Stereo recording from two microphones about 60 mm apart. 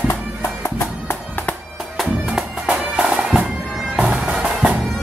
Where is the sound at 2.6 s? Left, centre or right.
Centre.